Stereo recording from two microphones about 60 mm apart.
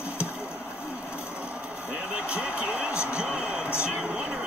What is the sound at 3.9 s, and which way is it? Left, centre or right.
Speech, right.